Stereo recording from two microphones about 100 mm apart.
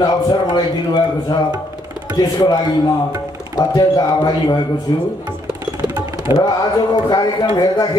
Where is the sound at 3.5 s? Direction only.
40° left (ahead or behind).